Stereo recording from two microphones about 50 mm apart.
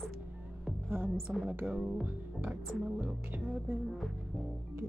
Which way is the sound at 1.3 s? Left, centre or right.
Right.